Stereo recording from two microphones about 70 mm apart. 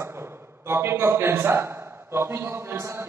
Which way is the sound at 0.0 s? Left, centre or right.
Right.